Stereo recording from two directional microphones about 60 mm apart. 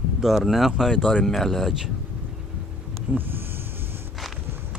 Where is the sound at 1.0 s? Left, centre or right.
Centre.